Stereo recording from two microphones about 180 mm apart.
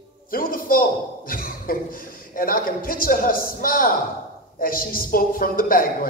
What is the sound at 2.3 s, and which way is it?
A man's voice, 50° left (ahead or behind).